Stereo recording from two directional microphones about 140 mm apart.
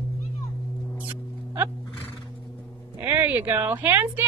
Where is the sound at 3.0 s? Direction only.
10° right (ahead or behind).